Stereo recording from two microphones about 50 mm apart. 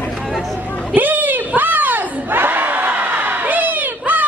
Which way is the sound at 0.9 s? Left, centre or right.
Right.